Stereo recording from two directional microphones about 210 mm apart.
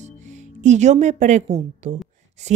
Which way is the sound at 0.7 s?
35° right (ahead or behind).